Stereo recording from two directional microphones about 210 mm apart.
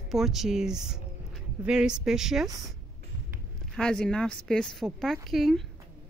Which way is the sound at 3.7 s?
5° left (ahead or behind).